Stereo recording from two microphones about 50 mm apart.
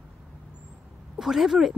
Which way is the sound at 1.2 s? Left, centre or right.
Centre.